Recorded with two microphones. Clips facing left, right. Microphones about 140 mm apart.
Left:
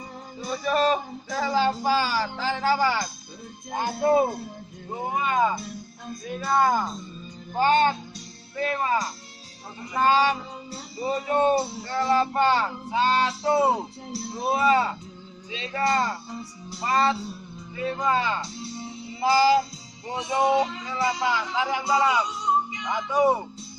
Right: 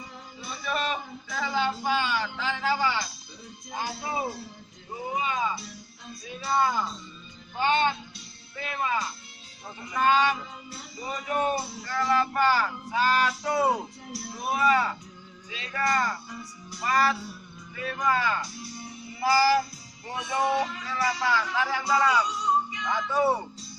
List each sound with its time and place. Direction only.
0.4 s a sound: 40° left (ahead or behind)
3.7 s speech: 50° left (ahead or behind)
7.5 s a sound: 40° left (ahead or behind)
9.9 s music: 35° left (ahead or behind)
15.5 s speech: 25° left (ahead or behind)
20.1 s music: 20° left (ahead or behind)